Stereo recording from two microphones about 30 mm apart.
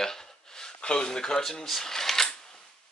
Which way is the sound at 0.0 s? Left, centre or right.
Centre.